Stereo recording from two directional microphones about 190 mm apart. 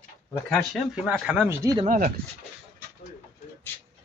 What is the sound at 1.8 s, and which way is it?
Speech, 50° right (ahead or behind).